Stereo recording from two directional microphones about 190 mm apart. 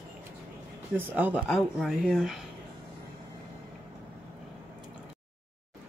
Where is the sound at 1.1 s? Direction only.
10° right (ahead or behind).